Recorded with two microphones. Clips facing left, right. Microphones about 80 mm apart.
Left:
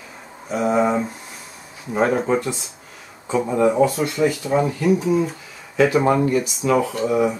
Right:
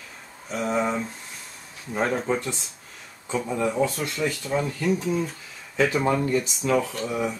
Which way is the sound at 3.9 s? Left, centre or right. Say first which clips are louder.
Left 8 dB; centre.